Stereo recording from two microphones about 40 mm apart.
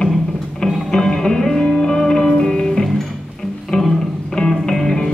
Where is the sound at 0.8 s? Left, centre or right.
Centre.